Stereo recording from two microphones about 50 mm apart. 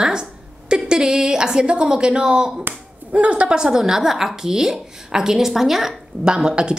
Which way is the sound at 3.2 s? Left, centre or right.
Right.